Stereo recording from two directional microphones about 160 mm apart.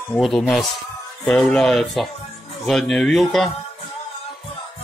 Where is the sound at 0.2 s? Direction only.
5° left (ahead or behind).